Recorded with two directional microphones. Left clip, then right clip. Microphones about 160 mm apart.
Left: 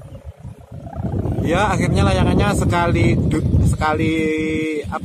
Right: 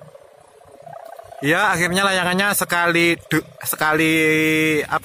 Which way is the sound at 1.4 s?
Centre (ahead or behind).